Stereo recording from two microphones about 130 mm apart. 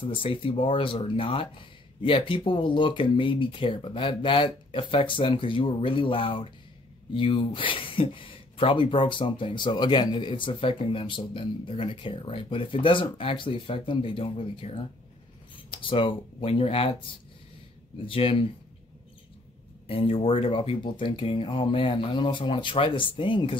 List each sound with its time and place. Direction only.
0.0 s speech: 45° left (ahead or behind)
15.9 s speech: 40° left (ahead or behind)
19.9 s speech: 45° left (ahead or behind)